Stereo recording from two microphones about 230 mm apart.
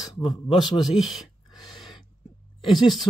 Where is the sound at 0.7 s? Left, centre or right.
Centre.